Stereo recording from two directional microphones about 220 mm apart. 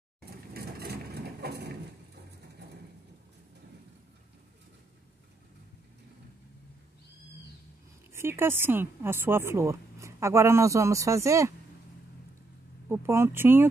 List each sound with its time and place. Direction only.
0.5 s a sound: 45° right (ahead or behind)
8.1 s a woman's voice: 10° right (ahead or behind)
12.8 s a woman's voice: 10° right (ahead or behind)